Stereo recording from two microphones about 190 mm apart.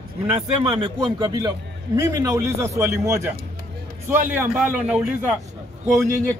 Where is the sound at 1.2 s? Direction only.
20° right (ahead or behind).